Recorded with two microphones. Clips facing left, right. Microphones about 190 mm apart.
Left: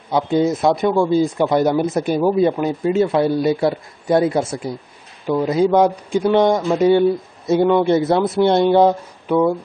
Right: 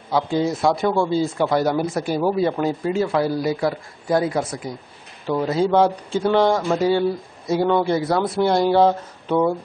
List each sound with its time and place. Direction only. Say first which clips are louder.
0.1 s speech: left 4 dB; 20° left (ahead or behind)
5.5 s speech: left 3 dB; 15° left (ahead or behind)